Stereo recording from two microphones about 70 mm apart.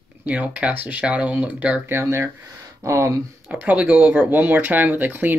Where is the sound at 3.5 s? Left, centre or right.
Right.